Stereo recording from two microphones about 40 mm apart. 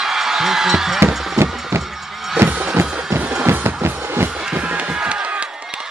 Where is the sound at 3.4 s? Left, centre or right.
Right.